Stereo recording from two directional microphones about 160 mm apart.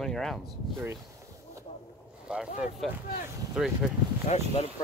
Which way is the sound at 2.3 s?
5° right (ahead or behind).